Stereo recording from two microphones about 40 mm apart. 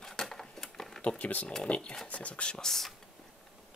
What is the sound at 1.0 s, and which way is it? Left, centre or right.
Speech, left.